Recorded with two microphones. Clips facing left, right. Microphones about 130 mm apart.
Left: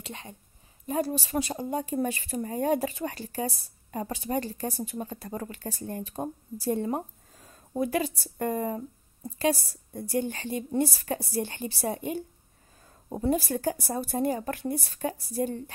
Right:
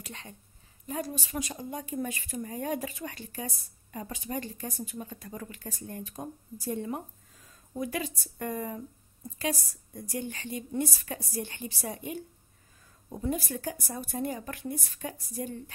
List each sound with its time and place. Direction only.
0.0 s a woman's voice: 20° left (ahead or behind)
13.1 s speech: 35° left (ahead or behind)